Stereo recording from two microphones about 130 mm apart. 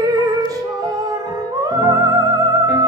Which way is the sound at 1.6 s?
25° right (ahead or behind).